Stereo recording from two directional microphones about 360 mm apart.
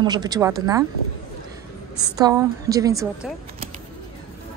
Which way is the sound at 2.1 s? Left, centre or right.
Centre.